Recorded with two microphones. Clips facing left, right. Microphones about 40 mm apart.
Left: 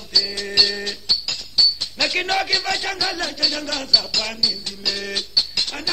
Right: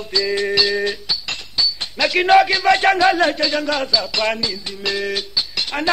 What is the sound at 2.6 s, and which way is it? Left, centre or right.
Speech, right.